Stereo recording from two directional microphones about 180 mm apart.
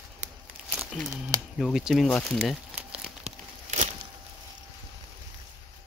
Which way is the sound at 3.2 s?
40° right (ahead or behind).